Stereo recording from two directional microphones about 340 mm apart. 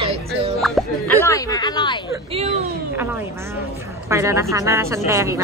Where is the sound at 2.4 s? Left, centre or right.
Centre.